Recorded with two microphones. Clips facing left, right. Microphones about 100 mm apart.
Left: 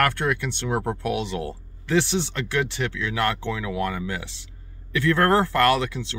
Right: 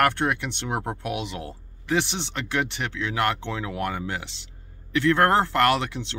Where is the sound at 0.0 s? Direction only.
20° right (ahead or behind).